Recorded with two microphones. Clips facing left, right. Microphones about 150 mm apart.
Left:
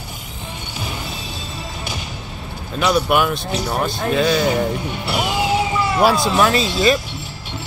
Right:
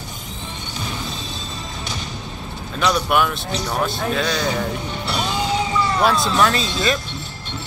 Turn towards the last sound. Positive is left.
turn(degrees=5)  # may be behind; listen again after turning